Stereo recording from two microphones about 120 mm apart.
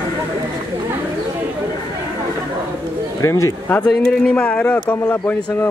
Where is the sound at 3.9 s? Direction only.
5° left (ahead or behind).